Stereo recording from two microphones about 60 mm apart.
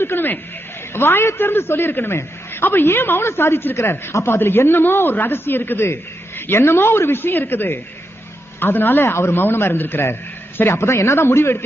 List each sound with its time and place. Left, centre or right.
0.0 s a man's voice: left
10.6 s a man's voice: left